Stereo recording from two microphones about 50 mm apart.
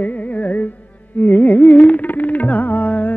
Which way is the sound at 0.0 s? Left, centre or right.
Left.